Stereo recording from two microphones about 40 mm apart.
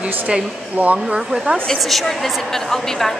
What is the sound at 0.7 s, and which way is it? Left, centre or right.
Speech, right.